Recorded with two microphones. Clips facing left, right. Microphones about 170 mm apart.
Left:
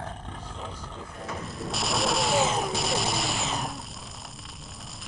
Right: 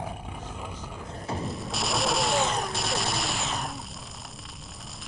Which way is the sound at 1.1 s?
30° right (ahead or behind).